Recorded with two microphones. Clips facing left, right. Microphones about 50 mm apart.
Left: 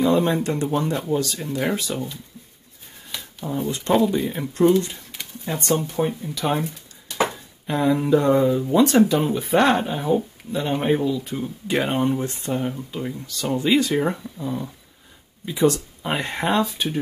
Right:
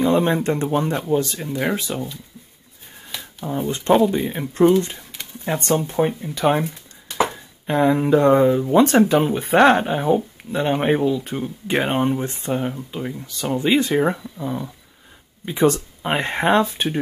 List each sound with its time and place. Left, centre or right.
0.0 s speech: right
0.9 s speech: centre
3.1 s a sound: centre
3.7 s speech: right
4.1 s speech: centre
12.7 s speech: centre
13.6 s speech: right
15.4 s speech: right